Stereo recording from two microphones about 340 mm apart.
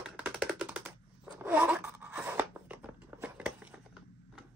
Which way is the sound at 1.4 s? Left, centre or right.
Centre.